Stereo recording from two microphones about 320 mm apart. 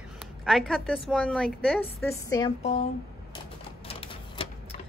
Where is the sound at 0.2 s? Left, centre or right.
Centre.